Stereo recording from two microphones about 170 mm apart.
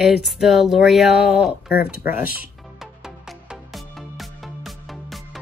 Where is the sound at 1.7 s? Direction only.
60° left (ahead or behind).